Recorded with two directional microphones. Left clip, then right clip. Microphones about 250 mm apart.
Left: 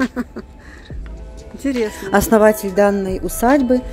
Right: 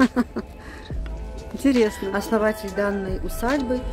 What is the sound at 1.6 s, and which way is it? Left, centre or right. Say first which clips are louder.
Speech: right 1 dB; centre.